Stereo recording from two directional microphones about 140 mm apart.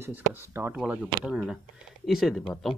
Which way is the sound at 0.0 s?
15° right (ahead or behind).